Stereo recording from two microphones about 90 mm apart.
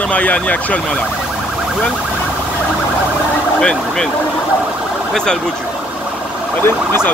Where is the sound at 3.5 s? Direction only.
5° left (ahead or behind).